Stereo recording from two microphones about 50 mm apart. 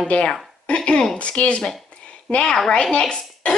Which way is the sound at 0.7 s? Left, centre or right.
Centre.